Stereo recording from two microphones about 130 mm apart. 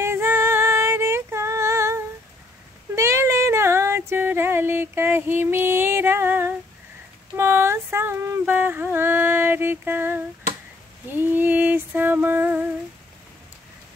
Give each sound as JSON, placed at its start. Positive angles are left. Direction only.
{"t": 0.0, "sound": "female singing", "side_deg": -20}
{"t": 3.0, "sound": "female singing", "side_deg": -20}
{"t": 7.3, "sound": "a sound", "side_deg": -20}
{"t": 11.1, "sound": "female singing", "side_deg": -15}